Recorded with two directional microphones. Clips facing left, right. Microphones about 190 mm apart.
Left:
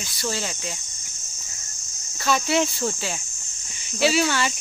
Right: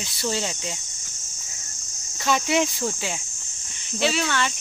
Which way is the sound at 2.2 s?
15° right (ahead or behind).